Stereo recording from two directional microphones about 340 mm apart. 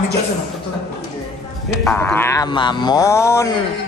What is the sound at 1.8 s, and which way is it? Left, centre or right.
Speech, centre.